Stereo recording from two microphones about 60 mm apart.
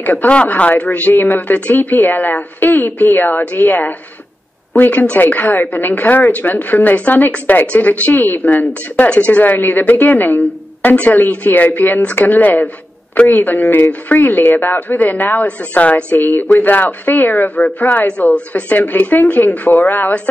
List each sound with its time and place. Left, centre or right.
0.0 s speech: left